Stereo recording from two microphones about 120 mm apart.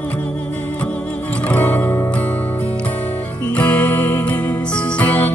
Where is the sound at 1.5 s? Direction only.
15° left (ahead or behind).